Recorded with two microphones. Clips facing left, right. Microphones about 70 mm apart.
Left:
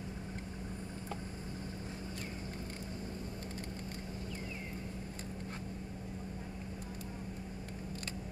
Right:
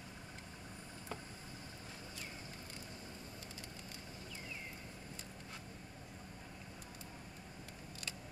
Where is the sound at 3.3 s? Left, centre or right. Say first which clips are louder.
Left 8 dB; left.